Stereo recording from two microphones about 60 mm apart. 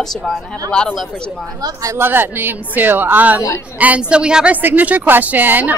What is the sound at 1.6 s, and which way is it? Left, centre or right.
Speech, right.